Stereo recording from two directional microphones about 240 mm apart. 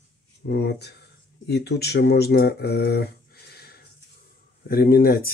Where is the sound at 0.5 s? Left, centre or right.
Left.